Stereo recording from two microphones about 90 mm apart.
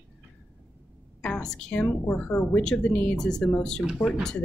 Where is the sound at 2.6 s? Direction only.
10° left (ahead or behind).